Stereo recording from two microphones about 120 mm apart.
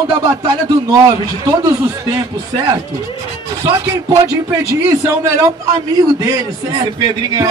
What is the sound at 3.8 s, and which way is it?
A man's voice, 30° right (ahead or behind).